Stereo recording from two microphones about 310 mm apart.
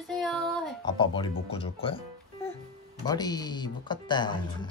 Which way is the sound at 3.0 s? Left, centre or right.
Centre.